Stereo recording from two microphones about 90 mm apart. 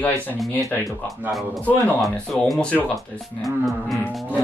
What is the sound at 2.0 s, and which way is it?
Speech, centre (ahead or behind).